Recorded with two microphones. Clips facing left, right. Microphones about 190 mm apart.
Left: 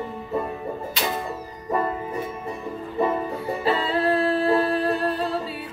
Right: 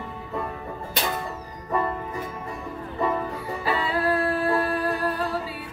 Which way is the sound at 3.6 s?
25° left (ahead or behind).